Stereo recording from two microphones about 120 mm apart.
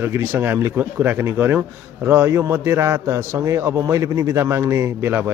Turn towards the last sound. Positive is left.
turn(degrees=-20)  # may be behind; listen again after turning